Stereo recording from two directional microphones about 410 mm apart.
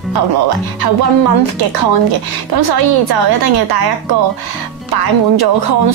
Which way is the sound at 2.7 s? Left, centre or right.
Right.